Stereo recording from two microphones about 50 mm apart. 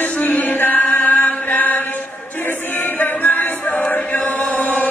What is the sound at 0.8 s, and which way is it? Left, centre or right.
Chant, left.